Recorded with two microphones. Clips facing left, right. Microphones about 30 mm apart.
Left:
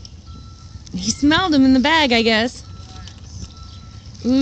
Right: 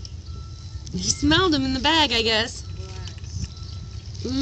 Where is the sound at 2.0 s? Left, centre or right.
Left.